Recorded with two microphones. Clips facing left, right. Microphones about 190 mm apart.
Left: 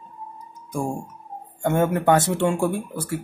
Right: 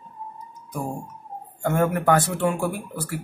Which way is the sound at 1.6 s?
25° left (ahead or behind).